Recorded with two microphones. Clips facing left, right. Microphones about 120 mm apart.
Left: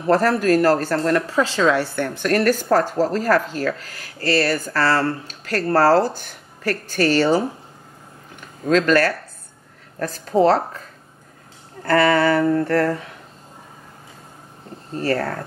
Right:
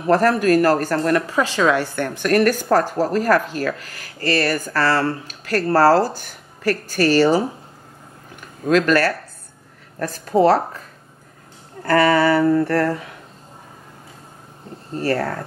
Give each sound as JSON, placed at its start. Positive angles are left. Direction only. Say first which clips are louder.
{"t": 0.0, "sound": "speech", "louder": "right 1 dB", "side_deg": -15}
{"t": 8.6, "sound": "speech", "louder": "even", "side_deg": -10}
{"t": 11.8, "sound": "speech", "louder": "right 1 dB", "side_deg": -10}
{"t": 15.0, "sound": "speech", "louder": "right 1 dB", "side_deg": -10}